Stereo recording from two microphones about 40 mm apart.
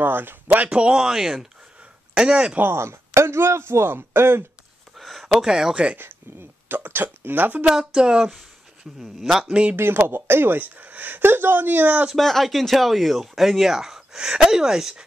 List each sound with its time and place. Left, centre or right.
0.0 s speech: right
0.7 s speech: right
2.1 s speech: right
2.6 s speech: right
4.9 s a sound: centre
5.4 s speech: centre
6.7 s speech: right
7.9 s speech: centre
9.5 s speech: right
9.8 s speech: right
12.2 s speech: centre
14.1 s speech: right